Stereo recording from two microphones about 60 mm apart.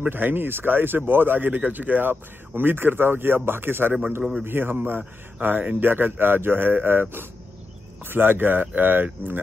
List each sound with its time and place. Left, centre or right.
0.0 s speech: right